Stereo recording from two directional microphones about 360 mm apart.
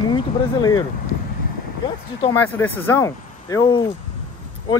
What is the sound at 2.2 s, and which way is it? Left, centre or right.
Speech, centre.